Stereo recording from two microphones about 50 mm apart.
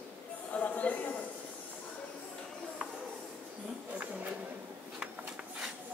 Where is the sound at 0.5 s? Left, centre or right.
Left.